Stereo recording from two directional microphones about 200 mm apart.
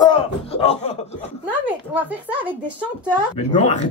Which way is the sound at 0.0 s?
25° left (ahead or behind).